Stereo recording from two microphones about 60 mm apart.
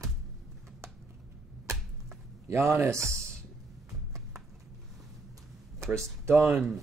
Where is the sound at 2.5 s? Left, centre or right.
Right.